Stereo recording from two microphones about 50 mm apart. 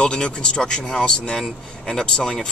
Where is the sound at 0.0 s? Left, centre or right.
Centre.